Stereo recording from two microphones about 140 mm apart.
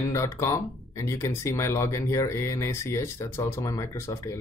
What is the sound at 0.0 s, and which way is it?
Speech, 20° left (ahead or behind).